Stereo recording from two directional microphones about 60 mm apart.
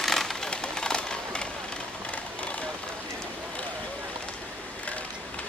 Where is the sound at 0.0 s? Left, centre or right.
Centre; by 2.7 s left.